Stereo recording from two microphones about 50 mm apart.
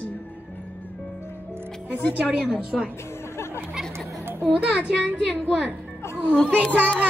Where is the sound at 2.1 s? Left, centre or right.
Centre.